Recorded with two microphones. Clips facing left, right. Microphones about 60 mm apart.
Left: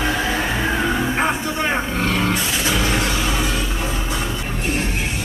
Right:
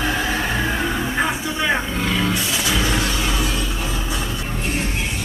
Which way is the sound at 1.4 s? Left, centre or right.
Left.